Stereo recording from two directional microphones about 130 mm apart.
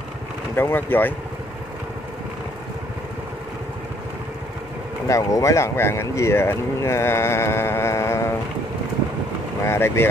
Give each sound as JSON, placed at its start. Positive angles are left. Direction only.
{"t": 0.6, "sound": "speech", "side_deg": 15}
{"t": 5.0, "sound": "speech", "side_deg": 25}
{"t": 9.7, "sound": "speech", "side_deg": 20}